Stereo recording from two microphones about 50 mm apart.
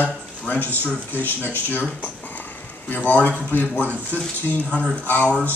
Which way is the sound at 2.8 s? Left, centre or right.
Left.